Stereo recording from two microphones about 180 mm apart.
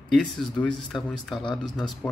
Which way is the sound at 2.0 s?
15° left (ahead or behind).